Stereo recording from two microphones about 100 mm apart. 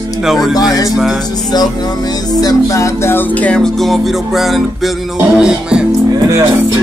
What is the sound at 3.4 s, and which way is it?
Speech, 10° left (ahead or behind).